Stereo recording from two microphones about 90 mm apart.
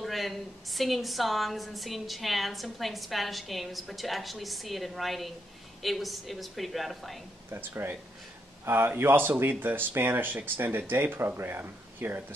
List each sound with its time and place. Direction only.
0.0 s a woman's voice: centre (ahead or behind)
7.5 s speech: 25° right (ahead or behind)